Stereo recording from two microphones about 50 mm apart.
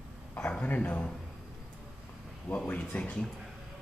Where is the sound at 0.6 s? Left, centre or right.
Left.